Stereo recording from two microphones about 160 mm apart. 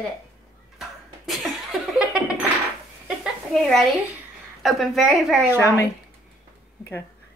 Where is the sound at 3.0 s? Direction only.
Centre (ahead or behind).